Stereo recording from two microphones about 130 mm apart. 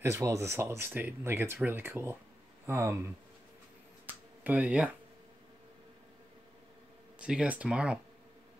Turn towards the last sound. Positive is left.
turn(degrees=-10)  # may be behind; listen again after turning